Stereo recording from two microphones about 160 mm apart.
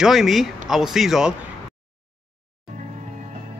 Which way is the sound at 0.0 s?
Centre (ahead or behind).